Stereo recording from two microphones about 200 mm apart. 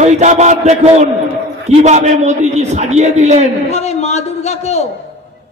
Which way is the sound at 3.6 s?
35° left (ahead or behind).